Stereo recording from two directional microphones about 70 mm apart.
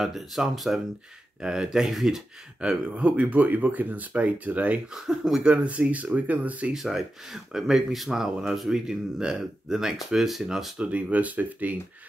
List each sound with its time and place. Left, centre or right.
0.0 s speech: centre; by 4.8 s right
4.9 s speech: centre; by 6.7 s right
6.7 s speech: centre
10.8 s speech: centre